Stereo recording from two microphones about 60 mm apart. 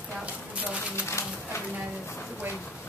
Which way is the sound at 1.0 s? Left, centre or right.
Left.